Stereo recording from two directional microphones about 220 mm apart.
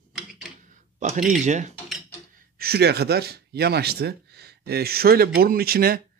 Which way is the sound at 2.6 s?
45° right (ahead or behind).